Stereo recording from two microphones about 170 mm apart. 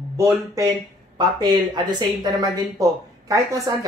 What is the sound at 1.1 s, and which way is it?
Speech, 25° right (ahead or behind).